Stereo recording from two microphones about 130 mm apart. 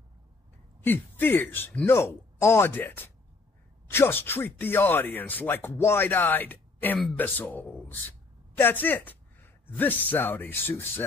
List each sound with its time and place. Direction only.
0.8 s speech: 15° left (ahead or behind)